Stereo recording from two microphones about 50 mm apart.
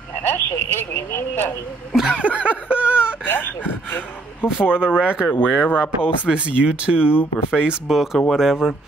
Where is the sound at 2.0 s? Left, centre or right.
Centre.